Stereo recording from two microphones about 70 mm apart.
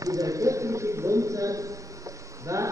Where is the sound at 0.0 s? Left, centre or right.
Right.